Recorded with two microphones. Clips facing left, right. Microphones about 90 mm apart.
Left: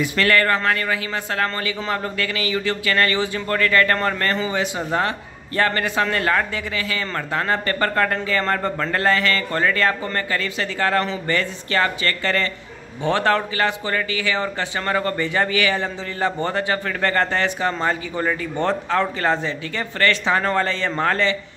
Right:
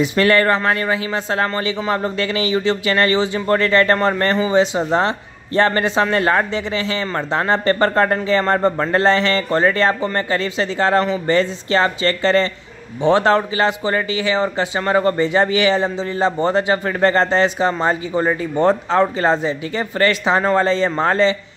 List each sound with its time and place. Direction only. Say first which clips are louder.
0.0 s speech: right 4 dB; 20° right (ahead or behind)